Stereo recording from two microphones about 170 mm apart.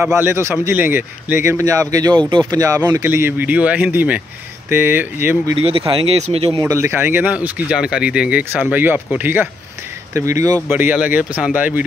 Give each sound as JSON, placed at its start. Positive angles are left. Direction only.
{"t": 0.1, "sound": "speech", "side_deg": -15}
{"t": 5.6, "sound": "speech", "side_deg": -35}
{"t": 6.6, "sound": "speech", "side_deg": -15}